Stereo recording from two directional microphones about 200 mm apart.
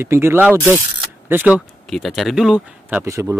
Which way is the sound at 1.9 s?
Centre (ahead or behind).